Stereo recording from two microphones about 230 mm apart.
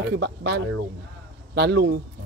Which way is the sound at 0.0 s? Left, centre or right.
Right.